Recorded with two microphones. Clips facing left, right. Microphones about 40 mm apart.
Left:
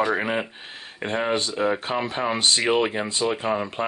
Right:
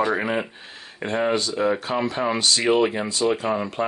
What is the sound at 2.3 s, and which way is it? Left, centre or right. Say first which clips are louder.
Speech: even; left.